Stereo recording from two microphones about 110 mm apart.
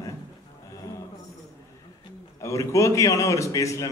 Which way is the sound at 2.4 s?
25° left (ahead or behind).